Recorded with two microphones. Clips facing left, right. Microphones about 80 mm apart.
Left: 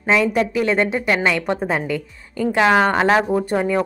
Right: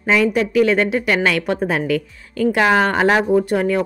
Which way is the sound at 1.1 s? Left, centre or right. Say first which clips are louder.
Right 1 dB; left.